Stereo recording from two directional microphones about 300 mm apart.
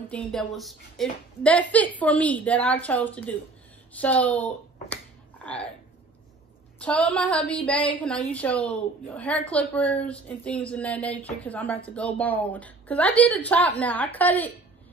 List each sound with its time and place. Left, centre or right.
0.1 s a woman's voice: centre
5.4 s a sound: centre
6.8 s a woman's voice: centre